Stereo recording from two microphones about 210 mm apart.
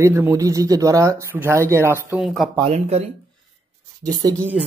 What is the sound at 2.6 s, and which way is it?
Speech, 30° right (ahead or behind).